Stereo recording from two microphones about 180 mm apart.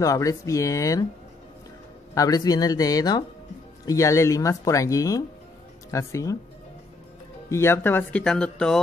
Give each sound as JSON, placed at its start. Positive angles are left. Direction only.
{"t": 0.0, "sound": "speech", "side_deg": 20}
{"t": 2.1, "sound": "speech", "side_deg": 20}
{"t": 7.4, "sound": "speech", "side_deg": 15}